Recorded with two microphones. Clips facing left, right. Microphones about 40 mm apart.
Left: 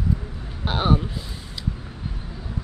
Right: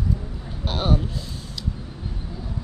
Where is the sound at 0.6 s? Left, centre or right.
Centre.